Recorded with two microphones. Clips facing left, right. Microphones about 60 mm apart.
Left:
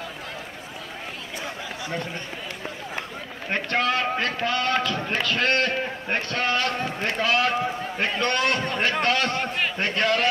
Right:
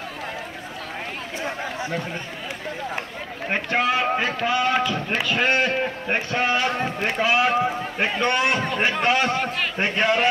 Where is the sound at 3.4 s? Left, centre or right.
Centre.